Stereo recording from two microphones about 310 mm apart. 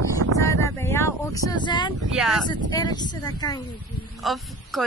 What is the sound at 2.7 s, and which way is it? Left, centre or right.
Speech, centre.